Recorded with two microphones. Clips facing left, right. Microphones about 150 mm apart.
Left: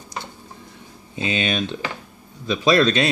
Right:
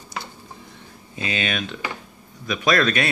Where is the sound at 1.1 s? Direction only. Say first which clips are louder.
Left 3 dB; 25° left (ahead or behind).